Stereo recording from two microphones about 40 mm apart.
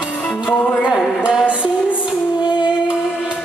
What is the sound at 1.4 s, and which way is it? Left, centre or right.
Music, right.